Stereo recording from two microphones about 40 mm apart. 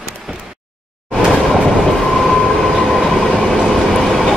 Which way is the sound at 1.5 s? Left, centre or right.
Centre.